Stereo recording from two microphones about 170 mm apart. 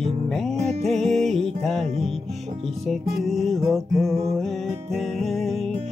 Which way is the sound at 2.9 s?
Centre (ahead or behind).